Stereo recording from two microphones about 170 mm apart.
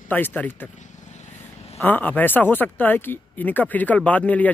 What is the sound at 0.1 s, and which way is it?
Speech, 10° left (ahead or behind).